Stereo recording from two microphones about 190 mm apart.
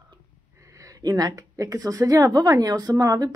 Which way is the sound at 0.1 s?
15° right (ahead or behind).